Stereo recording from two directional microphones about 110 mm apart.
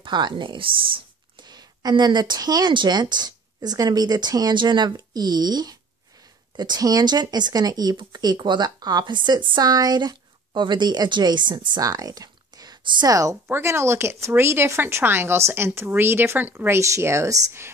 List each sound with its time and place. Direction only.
0.0 s speech: 45° right (ahead or behind)
13.1 s speech: 30° right (ahead or behind)